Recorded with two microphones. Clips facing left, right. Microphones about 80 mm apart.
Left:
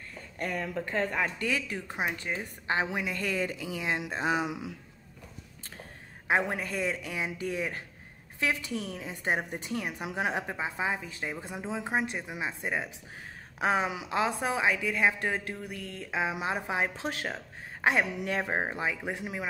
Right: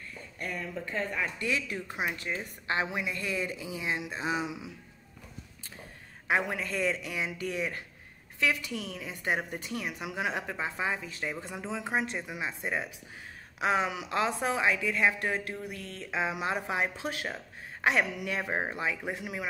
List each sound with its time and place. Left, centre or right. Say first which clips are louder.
0.4 s speech: left 4 dB; left
1.7 s a woman's voice: left 1 dB; left
3.0 s speech: left 2 dB; left
3.5 s speech: left 2 dB; left
6.2 s a woman's voice: left 1 dB; left
17.0 s speech: left 1 dB; left
17.8 s a woman's voice: left 1 dB; left